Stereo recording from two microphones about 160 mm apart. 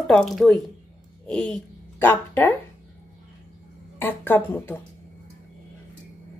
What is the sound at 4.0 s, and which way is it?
Speech, 10° left (ahead or behind).